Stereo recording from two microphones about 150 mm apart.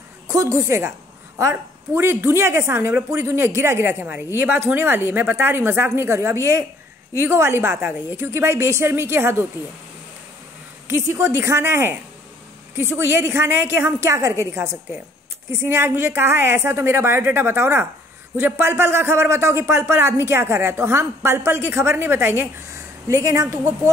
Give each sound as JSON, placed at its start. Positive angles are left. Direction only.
{"t": 0.3, "sound": "a woman's voice", "side_deg": -20}
{"t": 10.9, "sound": "a man's voice", "side_deg": -15}